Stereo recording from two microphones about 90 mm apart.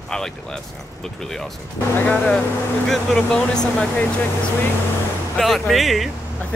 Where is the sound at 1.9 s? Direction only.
20° left (ahead or behind).